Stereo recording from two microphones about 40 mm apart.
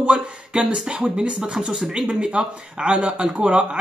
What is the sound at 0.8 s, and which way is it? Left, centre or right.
Speech, right.